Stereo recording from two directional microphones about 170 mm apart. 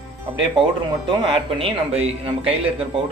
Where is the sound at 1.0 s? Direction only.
30° right (ahead or behind).